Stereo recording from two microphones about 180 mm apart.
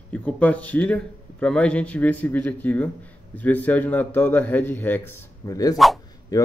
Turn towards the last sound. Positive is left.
turn(degrees=20)  # may be behind; listen again after turning